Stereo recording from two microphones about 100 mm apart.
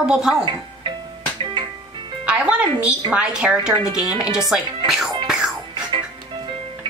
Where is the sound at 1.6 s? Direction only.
50° right (ahead or behind).